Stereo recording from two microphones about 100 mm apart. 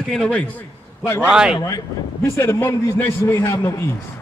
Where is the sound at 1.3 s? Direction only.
10° right (ahead or behind).